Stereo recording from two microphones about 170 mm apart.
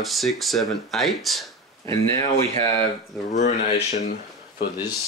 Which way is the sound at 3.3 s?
45° left (ahead or behind).